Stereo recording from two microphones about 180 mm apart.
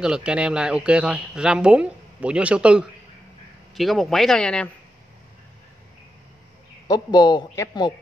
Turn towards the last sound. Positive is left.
turn(degrees=20)  # may be behind; listen again after turning